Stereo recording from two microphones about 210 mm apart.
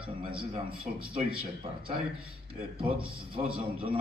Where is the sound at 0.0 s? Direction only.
25° right (ahead or behind).